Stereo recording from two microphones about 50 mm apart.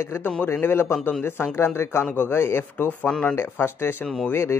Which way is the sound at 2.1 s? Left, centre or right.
Left.